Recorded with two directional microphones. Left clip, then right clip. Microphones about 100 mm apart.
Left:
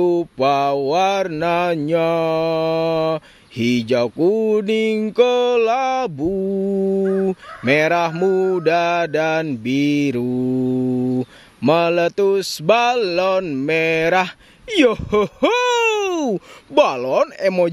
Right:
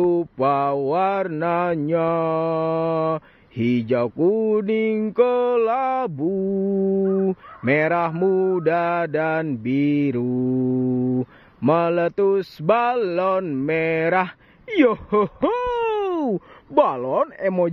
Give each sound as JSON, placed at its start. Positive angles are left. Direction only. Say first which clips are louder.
{"t": 0.0, "sound": "fowl", "louder": "left 3 dB", "side_deg": 30}
{"t": 17.4, "sound": "speech", "louder": "left 4 dB", "side_deg": 30}